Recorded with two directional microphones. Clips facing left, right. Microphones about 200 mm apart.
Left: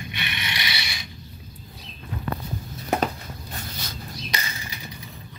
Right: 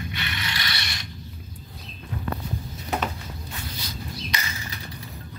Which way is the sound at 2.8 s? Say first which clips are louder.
Left 4 dB; 45° left (ahead or behind).